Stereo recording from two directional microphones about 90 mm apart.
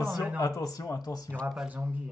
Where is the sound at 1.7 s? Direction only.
15° right (ahead or behind).